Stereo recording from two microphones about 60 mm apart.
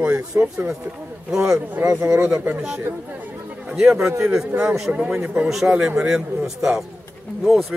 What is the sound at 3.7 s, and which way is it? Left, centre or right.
Speech, centre.